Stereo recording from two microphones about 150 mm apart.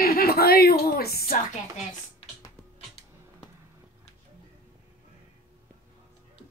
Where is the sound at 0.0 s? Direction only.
85° left.